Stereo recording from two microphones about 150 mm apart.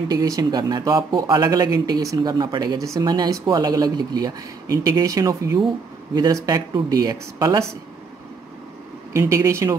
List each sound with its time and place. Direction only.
0.1 s speech: 25° right (ahead or behind)
9.1 s speech: 20° right (ahead or behind)